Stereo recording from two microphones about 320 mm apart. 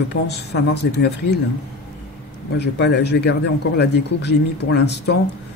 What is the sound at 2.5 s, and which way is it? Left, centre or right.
Speech, left.